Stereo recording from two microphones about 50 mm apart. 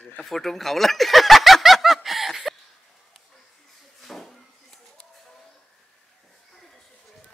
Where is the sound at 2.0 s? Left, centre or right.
Centre.